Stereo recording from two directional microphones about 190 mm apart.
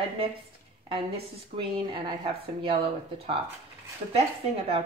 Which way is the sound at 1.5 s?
30° right (ahead or behind).